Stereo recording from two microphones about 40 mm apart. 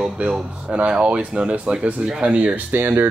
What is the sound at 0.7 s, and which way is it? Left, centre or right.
Speech, right.